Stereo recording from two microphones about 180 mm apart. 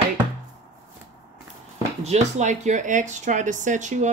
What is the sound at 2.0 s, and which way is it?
Speech, 40° right (ahead or behind).